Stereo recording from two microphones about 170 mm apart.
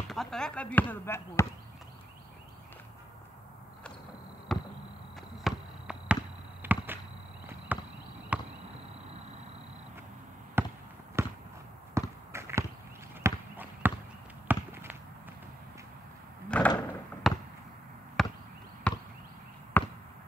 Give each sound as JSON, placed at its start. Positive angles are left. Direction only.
{"t": 0.1, "sound": "speech", "side_deg": 0}
{"t": 4.5, "sound": "a sound", "side_deg": 0}
{"t": 10.6, "sound": "basketball bounce", "side_deg": -15}
{"t": 11.2, "sound": "fireworks", "side_deg": -15}
{"t": 11.9, "sound": "a sound", "side_deg": -15}
{"t": 14.5, "sound": "basketball bounce", "side_deg": -10}
{"t": 16.4, "sound": "door", "side_deg": 10}
{"t": 17.3, "sound": "basketball bounce", "side_deg": 0}